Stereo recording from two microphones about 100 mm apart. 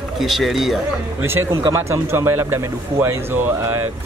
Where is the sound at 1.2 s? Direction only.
25° right (ahead or behind).